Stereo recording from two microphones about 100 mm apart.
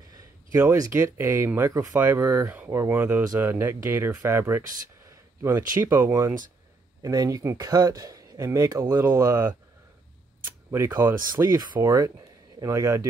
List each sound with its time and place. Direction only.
0.1 s speech: 35° right (ahead or behind)
1.7 s speech: 35° right (ahead or behind)
2.0 s speech: 20° right (ahead or behind)
7.0 s speech: 35° right (ahead or behind)
10.4 s camera: 25° right (ahead or behind)
11.0 s speech: 25° right (ahead or behind)